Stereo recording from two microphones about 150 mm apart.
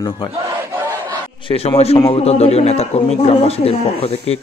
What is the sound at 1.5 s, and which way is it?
Speech, 40° left (ahead or behind).